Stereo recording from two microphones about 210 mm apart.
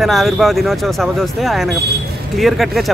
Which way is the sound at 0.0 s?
Centre (ahead or behind).